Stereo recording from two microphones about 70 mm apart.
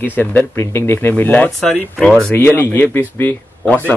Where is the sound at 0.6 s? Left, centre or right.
Left.